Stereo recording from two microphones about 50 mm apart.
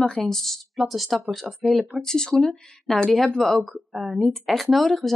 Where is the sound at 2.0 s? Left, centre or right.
Centre.